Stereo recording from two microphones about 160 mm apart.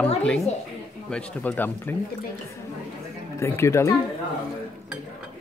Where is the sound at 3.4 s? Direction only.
15° left (ahead or behind).